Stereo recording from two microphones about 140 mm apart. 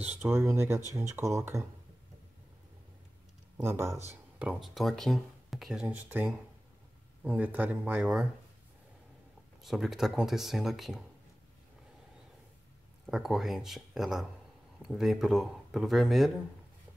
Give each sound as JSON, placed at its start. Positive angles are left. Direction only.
{"t": 0.0, "sound": "a sound", "side_deg": -10}
{"t": 0.3, "sound": "speech", "side_deg": -20}
{"t": 3.6, "sound": "speech", "side_deg": -20}
{"t": 4.4, "sound": "speech", "side_deg": -5}
{"t": 9.6, "sound": "speech", "side_deg": 0}
{"t": 13.0, "sound": "speech", "side_deg": -5}